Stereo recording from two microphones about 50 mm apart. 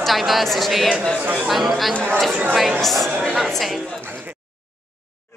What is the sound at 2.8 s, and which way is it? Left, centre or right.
Speech, centre.